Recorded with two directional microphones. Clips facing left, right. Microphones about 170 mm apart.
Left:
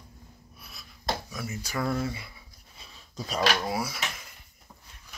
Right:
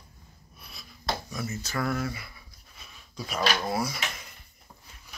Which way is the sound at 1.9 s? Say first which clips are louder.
Left 1 dB; 25° left (ahead or behind).